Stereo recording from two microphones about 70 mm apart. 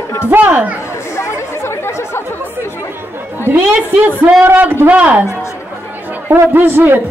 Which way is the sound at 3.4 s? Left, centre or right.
Right.